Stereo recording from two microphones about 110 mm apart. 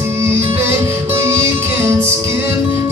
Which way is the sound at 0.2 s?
25° right (ahead or behind).